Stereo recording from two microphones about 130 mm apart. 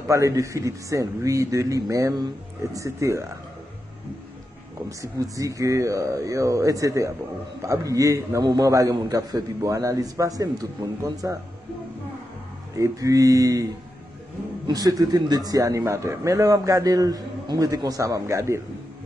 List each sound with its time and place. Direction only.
0.1 s a man's voice: 25° right (ahead or behind)
4.8 s a man's voice: 25° right (ahead or behind)
12.7 s a man's voice: 25° right (ahead or behind)
14.7 s a man's voice: 30° right (ahead or behind)